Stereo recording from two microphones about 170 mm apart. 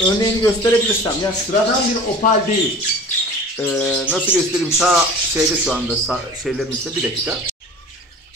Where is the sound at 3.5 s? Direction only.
10° left (ahead or behind).